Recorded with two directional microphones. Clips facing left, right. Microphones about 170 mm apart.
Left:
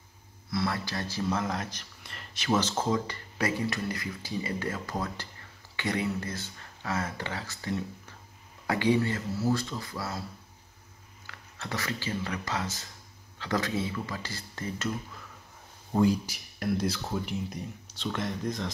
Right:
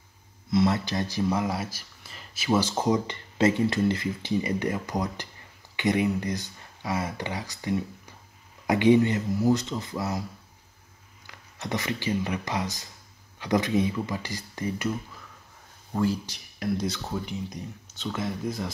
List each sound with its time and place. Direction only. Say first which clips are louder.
0.5 s speech: right 7 dB; 20° right (ahead or behind)
11.2 s speech: right 5 dB; 15° right (ahead or behind)
15.9 s speech: left 2 dB; 15° left (ahead or behind)
16.3 s speech: right 1 dB; centre (ahead or behind)